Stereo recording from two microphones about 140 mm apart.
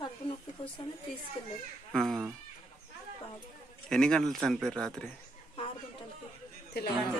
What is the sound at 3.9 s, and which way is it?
Speech, 5° left (ahead or behind).